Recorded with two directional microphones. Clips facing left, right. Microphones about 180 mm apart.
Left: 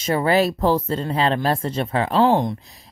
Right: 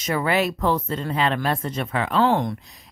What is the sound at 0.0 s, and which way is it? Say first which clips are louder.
Speech: left 4 dB; 30° left (ahead or behind).